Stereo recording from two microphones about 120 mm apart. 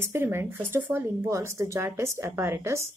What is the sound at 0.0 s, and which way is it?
A woman's voice, 20° right (ahead or behind).